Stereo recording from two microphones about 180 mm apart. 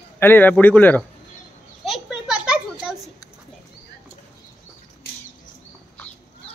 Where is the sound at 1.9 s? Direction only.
5° right (ahead or behind).